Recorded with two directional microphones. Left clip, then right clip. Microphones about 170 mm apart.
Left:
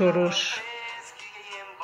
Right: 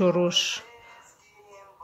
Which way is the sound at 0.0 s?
35° right (ahead or behind).